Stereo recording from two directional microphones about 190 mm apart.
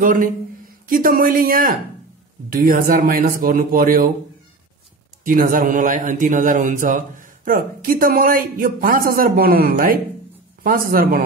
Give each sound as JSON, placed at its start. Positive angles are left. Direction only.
{"t": 0.0, "sound": "speech", "side_deg": -45}
{"t": 5.2, "sound": "speech", "side_deg": -45}